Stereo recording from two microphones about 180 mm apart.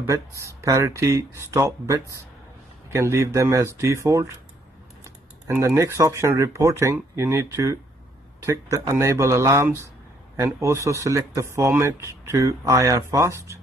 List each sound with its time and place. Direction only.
0.0 s speech: 15° right (ahead or behind)
5.0 s typing: 15° right (ahead or behind)
5.8 s speech: 15° right (ahead or behind)